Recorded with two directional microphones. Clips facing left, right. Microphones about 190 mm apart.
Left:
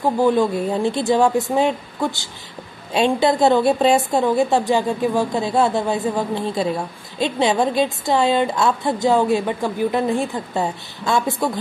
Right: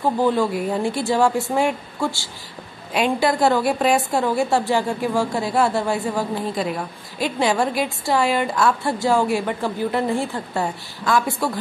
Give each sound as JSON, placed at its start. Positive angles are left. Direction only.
{"t": 0.2, "sound": "a woman's voice", "side_deg": 15}